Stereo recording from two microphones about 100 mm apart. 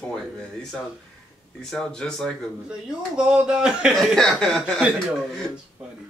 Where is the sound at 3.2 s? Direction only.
10° right (ahead or behind).